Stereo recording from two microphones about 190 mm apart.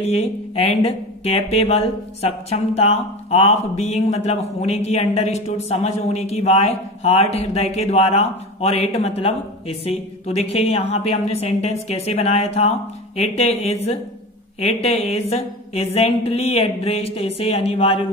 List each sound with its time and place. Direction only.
0.0 s speech: 30° left (ahead or behind)